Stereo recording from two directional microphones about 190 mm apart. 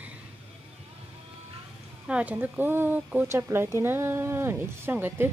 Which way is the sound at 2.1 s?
5° right (ahead or behind).